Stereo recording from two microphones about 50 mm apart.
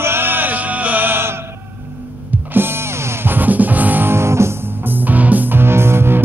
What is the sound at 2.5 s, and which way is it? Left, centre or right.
Music, right.